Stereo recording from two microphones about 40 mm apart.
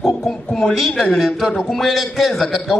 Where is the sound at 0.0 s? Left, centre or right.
Centre.